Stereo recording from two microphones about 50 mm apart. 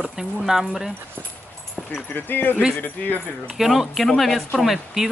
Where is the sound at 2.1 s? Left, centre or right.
Left.